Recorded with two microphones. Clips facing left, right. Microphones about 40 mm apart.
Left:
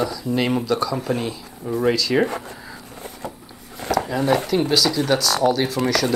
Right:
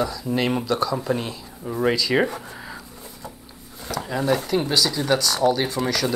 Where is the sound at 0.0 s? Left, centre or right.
Centre.